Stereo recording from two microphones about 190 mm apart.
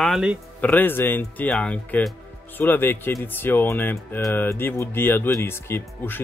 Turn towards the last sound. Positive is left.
turn(degrees=10)  # may be behind; listen again after turning